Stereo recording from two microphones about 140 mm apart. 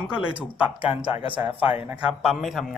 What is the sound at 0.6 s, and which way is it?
Speech, 40° left (ahead or behind).